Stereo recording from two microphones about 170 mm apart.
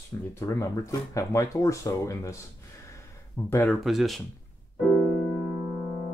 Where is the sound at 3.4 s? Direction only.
20° left (ahead or behind).